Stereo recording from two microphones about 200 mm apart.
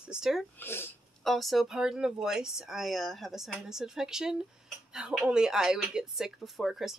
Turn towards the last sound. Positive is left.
turn(degrees=0)  # may be behind; listen again after turning